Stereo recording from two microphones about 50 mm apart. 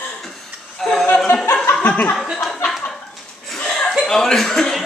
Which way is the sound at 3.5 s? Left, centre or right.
Centre.